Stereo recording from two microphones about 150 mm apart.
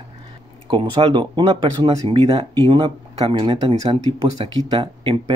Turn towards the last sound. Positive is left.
turn(degrees=-35)  # may be behind; listen again after turning